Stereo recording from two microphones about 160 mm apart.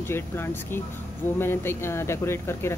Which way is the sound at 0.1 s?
15° left (ahead or behind).